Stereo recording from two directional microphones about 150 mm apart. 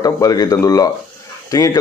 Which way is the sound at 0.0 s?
25° left (ahead or behind).